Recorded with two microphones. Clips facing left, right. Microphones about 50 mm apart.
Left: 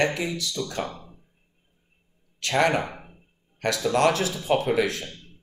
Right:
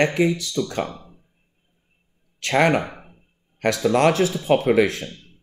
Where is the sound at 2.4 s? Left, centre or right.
Right.